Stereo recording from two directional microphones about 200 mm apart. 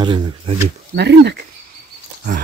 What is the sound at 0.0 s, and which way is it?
Speech, 20° right (ahead or behind).